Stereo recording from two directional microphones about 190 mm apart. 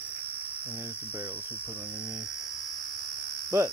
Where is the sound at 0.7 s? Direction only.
10° right (ahead or behind).